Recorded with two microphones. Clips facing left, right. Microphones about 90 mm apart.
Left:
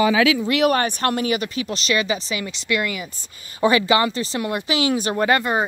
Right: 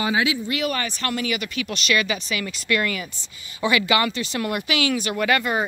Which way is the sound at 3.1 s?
45° left (ahead or behind).